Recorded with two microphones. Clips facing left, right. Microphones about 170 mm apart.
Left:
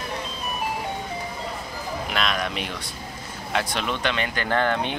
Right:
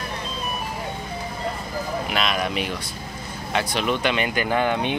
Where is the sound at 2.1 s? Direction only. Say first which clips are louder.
Right 2 dB; 5° right (ahead or behind).